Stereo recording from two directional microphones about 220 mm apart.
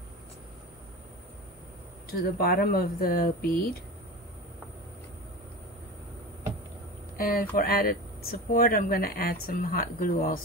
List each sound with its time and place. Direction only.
2.0 s speech: 45° left (ahead or behind)
7.2 s speech: 40° left (ahead or behind)